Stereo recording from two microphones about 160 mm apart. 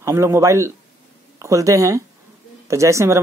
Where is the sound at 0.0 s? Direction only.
15° right (ahead or behind).